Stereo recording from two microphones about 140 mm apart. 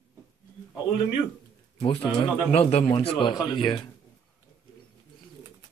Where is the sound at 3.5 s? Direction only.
35° left (ahead or behind).